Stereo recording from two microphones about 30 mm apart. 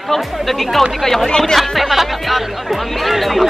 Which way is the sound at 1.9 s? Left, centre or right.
Centre.